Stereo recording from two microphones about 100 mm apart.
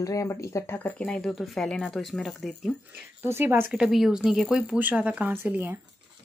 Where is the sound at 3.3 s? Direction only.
25° right (ahead or behind).